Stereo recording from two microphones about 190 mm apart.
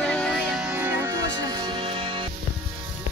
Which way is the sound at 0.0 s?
5° left (ahead or behind).